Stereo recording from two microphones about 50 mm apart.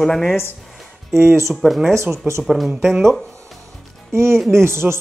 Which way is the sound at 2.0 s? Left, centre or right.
Right.